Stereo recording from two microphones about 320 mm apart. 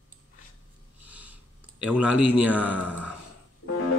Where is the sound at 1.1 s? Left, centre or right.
Centre.